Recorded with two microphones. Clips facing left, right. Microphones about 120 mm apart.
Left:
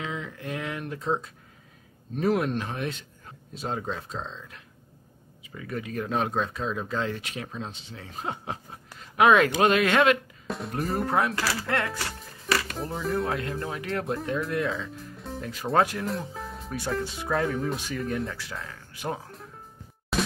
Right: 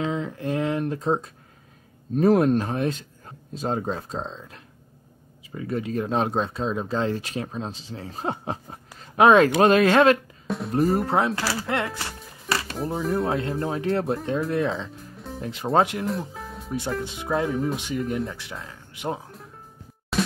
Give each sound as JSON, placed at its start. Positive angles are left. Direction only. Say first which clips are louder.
{"t": 0.0, "sound": "a sound", "louder": "right 7 dB", "side_deg": -35}
{"t": 2.1, "sound": "speech", "louder": "right 7 dB", "side_deg": -40}
{"t": 10.4, "sound": "music", "louder": "right 4 dB", "side_deg": 0}
{"t": 11.1, "sound": "speech", "louder": "right 2 dB", "side_deg": -25}
{"t": 12.4, "sound": "music", "louder": "even", "side_deg": -30}
{"t": 12.7, "sound": "speech", "louder": "right 4 dB", "side_deg": 0}
{"t": 13.2, "sound": "speech", "louder": "right 4 dB", "side_deg": -30}
{"t": 15.1, "sound": "music", "louder": "right 1 dB", "side_deg": 0}
{"t": 15.4, "sound": "speech", "louder": "right 3 dB", "side_deg": -25}
{"t": 16.1, "sound": "music", "louder": "right 2 dB", "side_deg": 0}
{"t": 17.0, "sound": "speech", "louder": "right 1 dB", "side_deg": -20}
{"t": 20.1, "sound": "music", "louder": "right 2 dB", "side_deg": 0}